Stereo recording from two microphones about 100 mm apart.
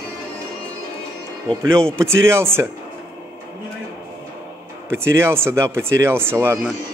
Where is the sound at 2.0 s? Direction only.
25° right (ahead or behind).